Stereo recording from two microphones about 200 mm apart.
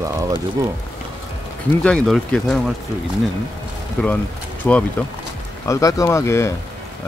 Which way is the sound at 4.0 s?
5° left (ahead or behind).